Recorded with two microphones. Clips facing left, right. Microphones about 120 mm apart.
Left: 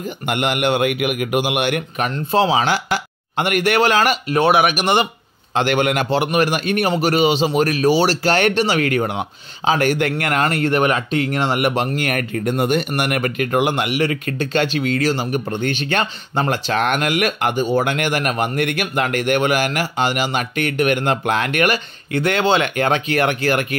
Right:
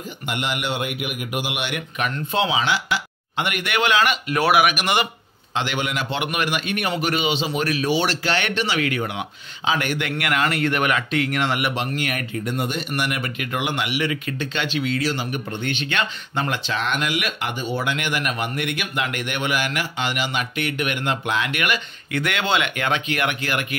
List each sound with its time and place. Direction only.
0.3 s speech: 60° left (ahead or behind); by 4.4 s 40° left (ahead or behind)
4.4 s speech: 30° left (ahead or behind)
5.5 s speech: 50° left (ahead or behind)
6.0 s speech: 35° left (ahead or behind)